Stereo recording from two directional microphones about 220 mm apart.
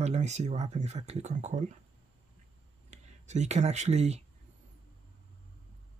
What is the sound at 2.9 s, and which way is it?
Speech, 30° right (ahead or behind).